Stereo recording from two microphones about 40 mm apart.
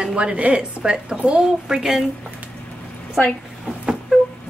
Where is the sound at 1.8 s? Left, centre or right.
Centre.